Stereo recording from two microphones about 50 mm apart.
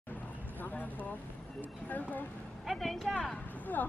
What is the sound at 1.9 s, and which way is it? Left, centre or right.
Speech, left.